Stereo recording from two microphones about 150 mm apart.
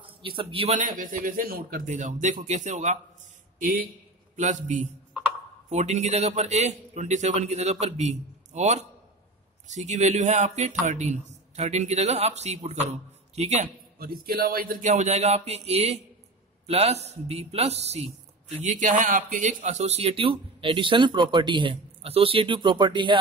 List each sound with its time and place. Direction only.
0.2 s speech: 35° right (ahead or behind)
0.7 s a man's voice: 65° right (ahead or behind)
3.5 s speech: 70° right (ahead or behind)
4.4 s a man's voice: 55° right (ahead or behind)
14.2 s a man's voice: 75° right (ahead or behind); by 23.1 s 30° right (ahead or behind)